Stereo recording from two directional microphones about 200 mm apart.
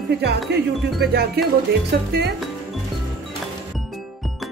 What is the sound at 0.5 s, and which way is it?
Speech, 55° right (ahead or behind).